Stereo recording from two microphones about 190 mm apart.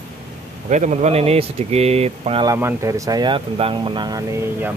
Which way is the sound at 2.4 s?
15° right (ahead or behind).